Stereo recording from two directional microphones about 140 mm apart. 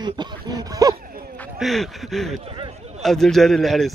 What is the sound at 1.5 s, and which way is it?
Speech, centre (ahead or behind).